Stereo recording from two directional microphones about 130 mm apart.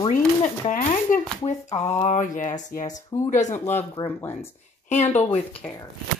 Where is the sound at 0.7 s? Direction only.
90° left.